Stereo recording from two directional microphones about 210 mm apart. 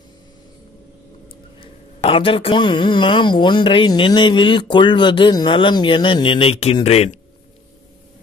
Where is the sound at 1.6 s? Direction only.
25° left (ahead or behind).